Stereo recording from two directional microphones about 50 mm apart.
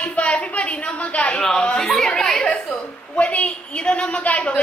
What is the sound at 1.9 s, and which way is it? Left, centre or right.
Chatter, centre.